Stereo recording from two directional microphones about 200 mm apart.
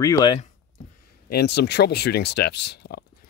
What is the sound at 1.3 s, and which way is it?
Speech, 55° left (ahead or behind).